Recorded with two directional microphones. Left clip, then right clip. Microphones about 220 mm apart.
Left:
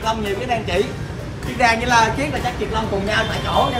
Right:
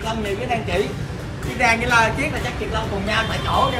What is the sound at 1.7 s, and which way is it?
Speech, 45° left (ahead or behind).